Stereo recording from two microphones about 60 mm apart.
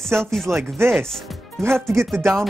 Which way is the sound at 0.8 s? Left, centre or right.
Right.